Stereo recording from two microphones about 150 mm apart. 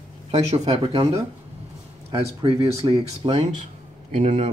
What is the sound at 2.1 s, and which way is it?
Speech, 40° right (ahead or behind).